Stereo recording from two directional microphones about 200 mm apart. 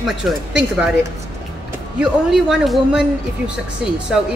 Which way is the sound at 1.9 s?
Centre (ahead or behind).